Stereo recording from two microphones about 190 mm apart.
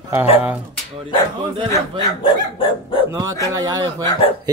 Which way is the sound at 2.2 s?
25° left (ahead or behind).